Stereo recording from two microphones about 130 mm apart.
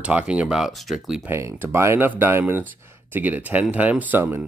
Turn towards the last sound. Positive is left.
turn(degrees=-15)  # may be behind; listen again after turning